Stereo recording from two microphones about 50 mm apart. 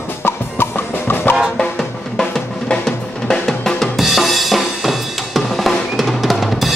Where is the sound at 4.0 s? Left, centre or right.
Centre.